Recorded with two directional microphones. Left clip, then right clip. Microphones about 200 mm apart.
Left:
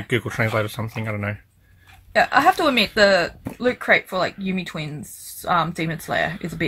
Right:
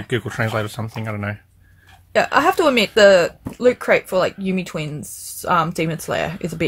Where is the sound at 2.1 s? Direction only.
60° right (ahead or behind).